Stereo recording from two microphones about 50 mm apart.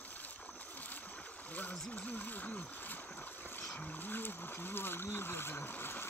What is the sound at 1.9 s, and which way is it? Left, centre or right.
Boat, left.